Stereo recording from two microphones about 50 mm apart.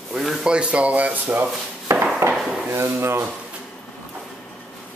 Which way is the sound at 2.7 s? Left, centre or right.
Right.